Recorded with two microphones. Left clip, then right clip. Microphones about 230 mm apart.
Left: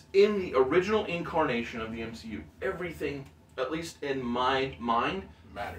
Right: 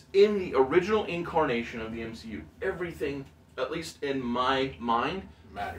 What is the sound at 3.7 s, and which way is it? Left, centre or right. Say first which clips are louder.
A man's voice: right 1 dB; centre.